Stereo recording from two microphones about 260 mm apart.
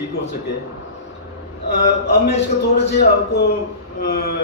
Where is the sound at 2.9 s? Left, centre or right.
Left.